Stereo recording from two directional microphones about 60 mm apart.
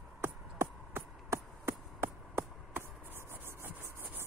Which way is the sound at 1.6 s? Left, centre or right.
Right.